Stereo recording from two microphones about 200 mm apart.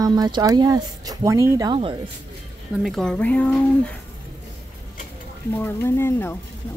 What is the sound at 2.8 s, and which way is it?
Speech, 5° left (ahead or behind).